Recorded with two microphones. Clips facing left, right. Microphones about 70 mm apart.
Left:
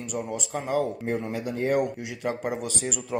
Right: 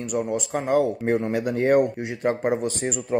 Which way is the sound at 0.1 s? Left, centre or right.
Right.